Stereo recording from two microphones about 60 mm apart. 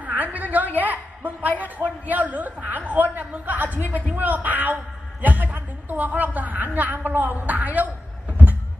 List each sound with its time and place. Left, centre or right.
0.0 s a sound: right
1.6 s chuckle: right
4.2 s a woman's voice: right